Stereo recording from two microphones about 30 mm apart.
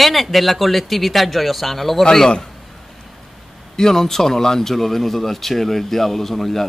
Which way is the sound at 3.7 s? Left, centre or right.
Centre.